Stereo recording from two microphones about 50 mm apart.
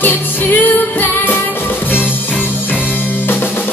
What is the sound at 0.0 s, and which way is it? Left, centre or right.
Music, left.